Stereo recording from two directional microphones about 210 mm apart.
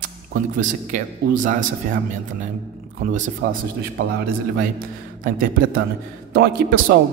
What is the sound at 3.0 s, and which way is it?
Speech, 35° right (ahead or behind).